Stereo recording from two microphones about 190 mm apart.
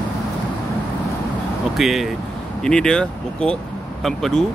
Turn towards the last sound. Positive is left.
turn(degrees=0)  # may be behind; listen again after turning